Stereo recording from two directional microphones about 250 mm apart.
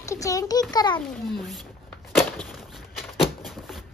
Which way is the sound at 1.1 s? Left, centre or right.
Centre.